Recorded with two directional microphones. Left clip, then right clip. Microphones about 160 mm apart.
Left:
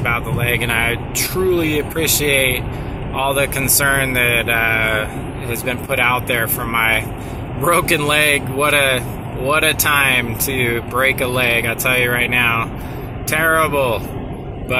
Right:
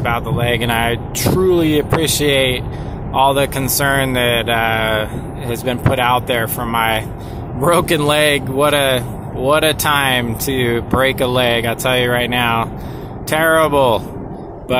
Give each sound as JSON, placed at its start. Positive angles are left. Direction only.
{"t": 0.0, "sound": "speech", "side_deg": -40}